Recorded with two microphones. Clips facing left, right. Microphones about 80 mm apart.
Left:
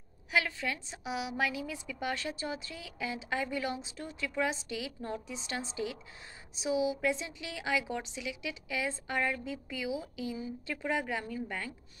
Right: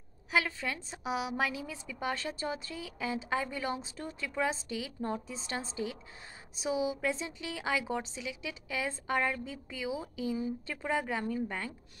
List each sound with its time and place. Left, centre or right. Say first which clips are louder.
0.3 s a woman's voice: even; right